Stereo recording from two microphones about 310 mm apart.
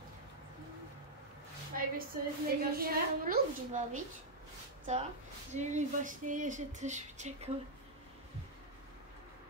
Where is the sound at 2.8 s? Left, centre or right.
Right.